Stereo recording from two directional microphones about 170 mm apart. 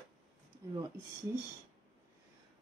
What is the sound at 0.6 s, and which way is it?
Speech, 20° right (ahead or behind).